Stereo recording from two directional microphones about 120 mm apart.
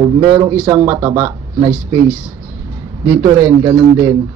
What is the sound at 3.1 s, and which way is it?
A man's voice, 25° right (ahead or behind).